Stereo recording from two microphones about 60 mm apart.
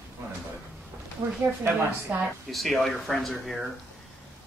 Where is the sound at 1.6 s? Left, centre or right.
Right.